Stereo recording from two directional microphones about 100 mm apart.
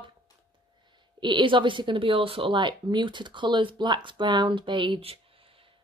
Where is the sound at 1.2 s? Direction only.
55° right (ahead or behind).